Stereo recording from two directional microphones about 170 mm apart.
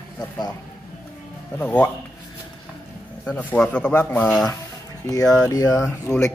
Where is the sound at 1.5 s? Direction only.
10° left (ahead or behind).